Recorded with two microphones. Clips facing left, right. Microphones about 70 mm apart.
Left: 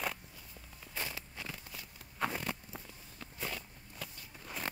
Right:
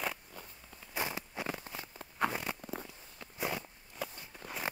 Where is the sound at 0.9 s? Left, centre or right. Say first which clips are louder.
Right 5 dB; right.